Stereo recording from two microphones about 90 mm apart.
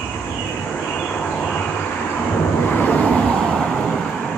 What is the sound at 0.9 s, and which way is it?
Vehicle, 15° left (ahead or behind).